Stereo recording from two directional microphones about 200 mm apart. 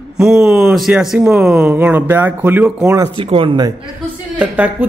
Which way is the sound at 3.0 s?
25° right (ahead or behind).